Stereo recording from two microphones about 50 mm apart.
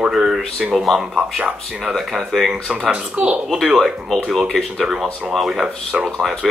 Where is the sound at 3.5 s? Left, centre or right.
Centre.